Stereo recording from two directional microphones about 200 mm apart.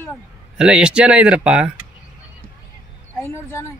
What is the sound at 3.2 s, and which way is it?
Speech, 15° left (ahead or behind).